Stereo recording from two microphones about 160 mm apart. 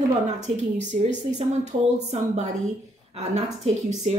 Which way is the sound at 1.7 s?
45° right (ahead or behind).